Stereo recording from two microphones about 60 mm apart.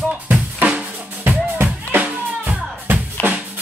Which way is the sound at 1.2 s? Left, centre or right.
Right.